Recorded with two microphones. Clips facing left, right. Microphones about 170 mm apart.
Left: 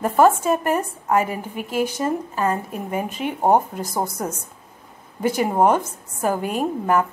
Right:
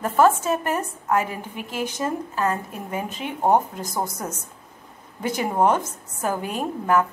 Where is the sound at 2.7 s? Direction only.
50° left (ahead or behind).